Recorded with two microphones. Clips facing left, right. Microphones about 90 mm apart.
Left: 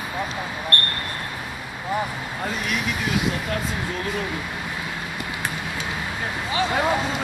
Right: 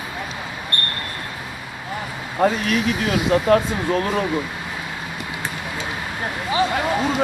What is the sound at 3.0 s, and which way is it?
Speech, 55° right (ahead or behind).